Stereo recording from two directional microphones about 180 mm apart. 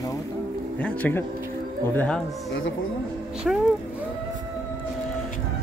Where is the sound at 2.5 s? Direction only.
90° left.